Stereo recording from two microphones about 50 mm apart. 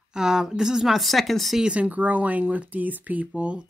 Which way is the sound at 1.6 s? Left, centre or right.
Right.